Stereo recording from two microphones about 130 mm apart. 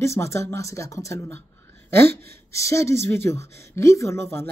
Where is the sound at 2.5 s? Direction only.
20° left (ahead or behind).